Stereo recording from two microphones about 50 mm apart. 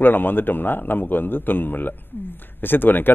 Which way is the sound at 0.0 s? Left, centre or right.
Left.